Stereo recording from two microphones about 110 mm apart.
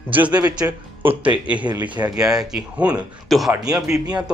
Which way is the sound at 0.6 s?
15° right (ahead or behind).